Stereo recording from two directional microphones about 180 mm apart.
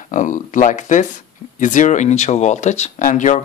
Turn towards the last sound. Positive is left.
turn(degrees=45)  # may be behind; listen again after turning